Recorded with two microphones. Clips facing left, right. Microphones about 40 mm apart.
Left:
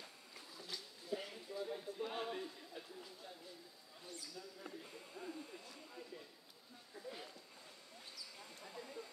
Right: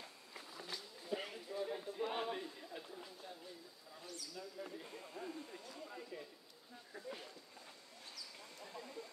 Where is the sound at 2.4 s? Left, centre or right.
Centre.